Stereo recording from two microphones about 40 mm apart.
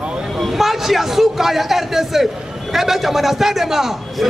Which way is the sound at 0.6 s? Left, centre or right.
Centre.